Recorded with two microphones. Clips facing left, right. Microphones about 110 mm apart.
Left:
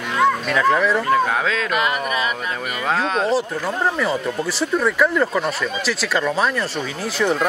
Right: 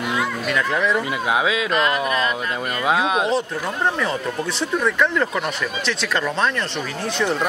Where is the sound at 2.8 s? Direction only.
5° right (ahead or behind).